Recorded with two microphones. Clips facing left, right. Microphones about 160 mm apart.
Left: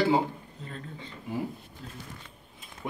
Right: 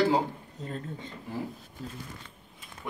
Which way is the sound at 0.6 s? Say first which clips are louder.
Right 5 dB; 40° right (ahead or behind).